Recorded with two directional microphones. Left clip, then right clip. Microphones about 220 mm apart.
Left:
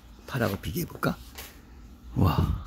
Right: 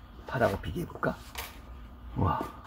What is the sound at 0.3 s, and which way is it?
Speech, 55° left (ahead or behind).